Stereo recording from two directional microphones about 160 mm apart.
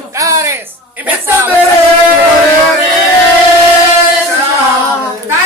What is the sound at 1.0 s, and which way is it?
Music, 10° right (ahead or behind).